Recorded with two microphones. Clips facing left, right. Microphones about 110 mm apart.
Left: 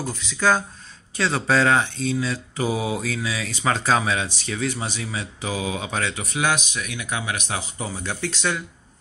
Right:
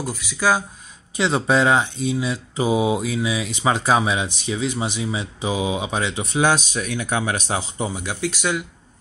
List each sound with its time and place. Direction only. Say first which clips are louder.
0.0 s speech: right 1 dB; 5° right (ahead or behind)
6.2 s speech: right 7 dB; 30° right (ahead or behind)
7.9 s speech: right 3 dB; 15° right (ahead or behind)